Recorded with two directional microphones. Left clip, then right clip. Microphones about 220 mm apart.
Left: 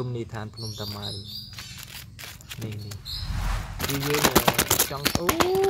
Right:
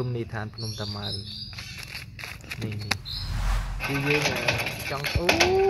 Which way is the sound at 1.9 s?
15° left (ahead or behind).